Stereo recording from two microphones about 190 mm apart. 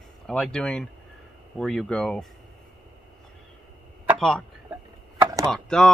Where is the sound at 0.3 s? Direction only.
5° left (ahead or behind).